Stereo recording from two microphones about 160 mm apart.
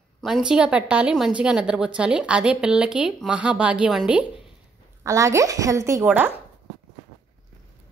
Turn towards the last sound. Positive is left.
turn(degrees=-10)  # may be behind; listen again after turning